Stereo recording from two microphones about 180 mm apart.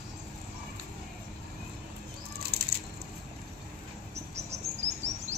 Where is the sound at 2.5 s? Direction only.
60° right (ahead or behind).